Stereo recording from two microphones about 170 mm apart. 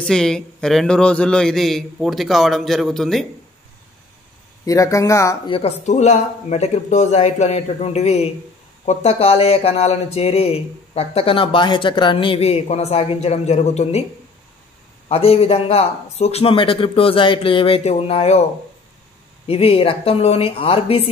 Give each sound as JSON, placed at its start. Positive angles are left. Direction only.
{"t": 0.0, "sound": "a man's voice", "side_deg": 5}
{"t": 4.6, "sound": "speech", "side_deg": 20}
{"t": 5.5, "sound": "speech", "side_deg": 40}
{"t": 15.0, "sound": "speech", "side_deg": 35}
{"t": 19.4, "sound": "speech", "side_deg": 35}